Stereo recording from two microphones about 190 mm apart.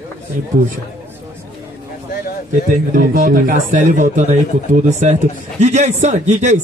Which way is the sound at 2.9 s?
50° right (ahead or behind).